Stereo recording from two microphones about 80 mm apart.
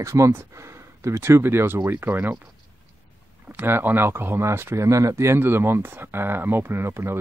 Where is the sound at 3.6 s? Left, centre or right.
Right.